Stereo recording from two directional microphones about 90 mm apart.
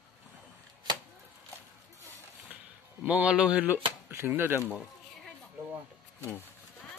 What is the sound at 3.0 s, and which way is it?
Speech, 10° right (ahead or behind).